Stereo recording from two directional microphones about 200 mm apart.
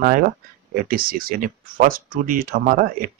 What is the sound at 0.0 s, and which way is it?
Speech, 45° right (ahead or behind).